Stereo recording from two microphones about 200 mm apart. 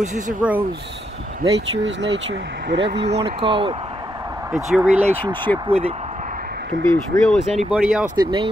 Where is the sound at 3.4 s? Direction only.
25° right (ahead or behind).